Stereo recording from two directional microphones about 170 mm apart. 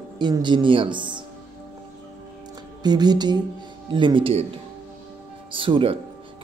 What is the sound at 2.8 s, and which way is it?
Speech, 25° right (ahead or behind).